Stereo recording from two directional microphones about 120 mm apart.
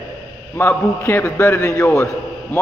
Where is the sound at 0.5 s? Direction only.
20° left (ahead or behind).